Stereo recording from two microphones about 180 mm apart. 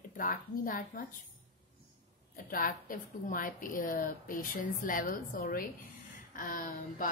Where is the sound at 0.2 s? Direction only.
50° left (ahead or behind).